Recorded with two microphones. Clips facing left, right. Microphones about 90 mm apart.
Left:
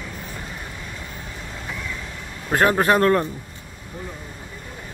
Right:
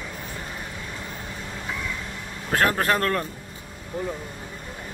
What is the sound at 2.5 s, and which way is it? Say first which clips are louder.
Speech: left 5 dB; 10° left (ahead or behind).